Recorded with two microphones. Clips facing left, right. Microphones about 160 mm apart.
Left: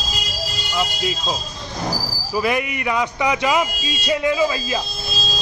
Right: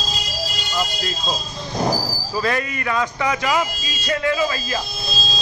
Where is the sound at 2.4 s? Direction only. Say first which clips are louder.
Left 2 dB; 15° left (ahead or behind).